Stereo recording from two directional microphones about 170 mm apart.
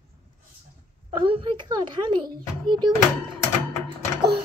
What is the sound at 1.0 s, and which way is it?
Speech, 30° right (ahead or behind).